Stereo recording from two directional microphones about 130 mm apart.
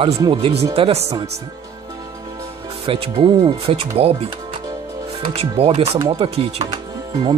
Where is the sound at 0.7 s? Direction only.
50° right (ahead or behind).